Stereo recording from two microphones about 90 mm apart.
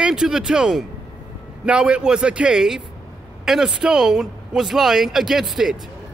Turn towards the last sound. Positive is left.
turn(degrees=-5)  # may be behind; listen again after turning